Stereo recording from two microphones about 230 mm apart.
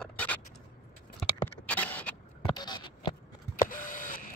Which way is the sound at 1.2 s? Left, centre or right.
Centre.